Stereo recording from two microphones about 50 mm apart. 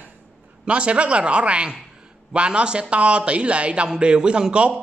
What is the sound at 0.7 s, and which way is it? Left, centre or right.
A man's voice, right.